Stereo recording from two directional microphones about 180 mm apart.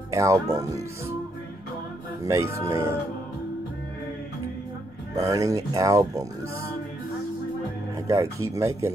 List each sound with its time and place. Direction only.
0.1 s speech: 15° right (ahead or behind)
2.2 s speech: 15° right (ahead or behind)
5.1 s speech: 20° right (ahead or behind)
8.1 s speech: 20° right (ahead or behind)